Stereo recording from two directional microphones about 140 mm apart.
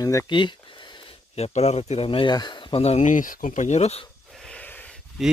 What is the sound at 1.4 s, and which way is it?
Speech, 50° left (ahead or behind).